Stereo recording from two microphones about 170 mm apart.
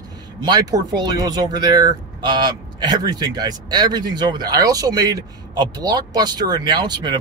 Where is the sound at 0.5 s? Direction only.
20° right (ahead or behind).